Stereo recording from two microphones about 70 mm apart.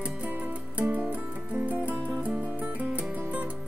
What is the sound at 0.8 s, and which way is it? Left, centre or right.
Music, right.